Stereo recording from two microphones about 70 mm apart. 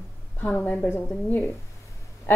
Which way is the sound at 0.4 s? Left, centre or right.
Left.